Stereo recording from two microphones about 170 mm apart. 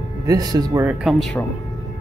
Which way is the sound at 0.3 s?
25° right (ahead or behind).